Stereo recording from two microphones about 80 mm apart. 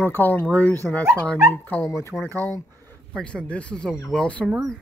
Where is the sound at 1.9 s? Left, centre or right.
Left.